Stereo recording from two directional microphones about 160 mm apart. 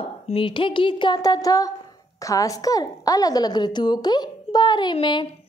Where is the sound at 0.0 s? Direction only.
35° left (ahead or behind).